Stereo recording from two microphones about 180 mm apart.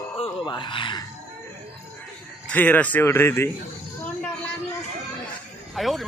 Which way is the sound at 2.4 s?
10° left (ahead or behind).